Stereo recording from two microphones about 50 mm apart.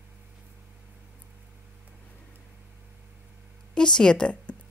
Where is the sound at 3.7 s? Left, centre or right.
Centre.